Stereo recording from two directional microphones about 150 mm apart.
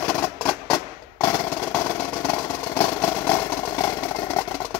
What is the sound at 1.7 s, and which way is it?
Vehicle, 10° left (ahead or behind).